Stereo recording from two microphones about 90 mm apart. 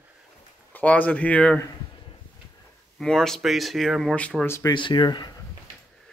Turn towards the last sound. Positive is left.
turn(degrees=55)  # may be behind; listen again after turning